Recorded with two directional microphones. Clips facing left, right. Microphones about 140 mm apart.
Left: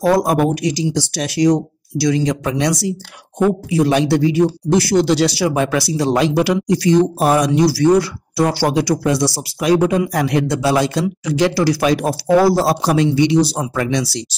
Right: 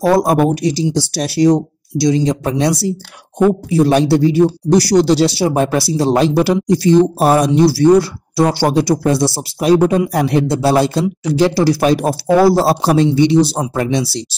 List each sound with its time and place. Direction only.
0.0 s a man's voice: 25° right (ahead or behind)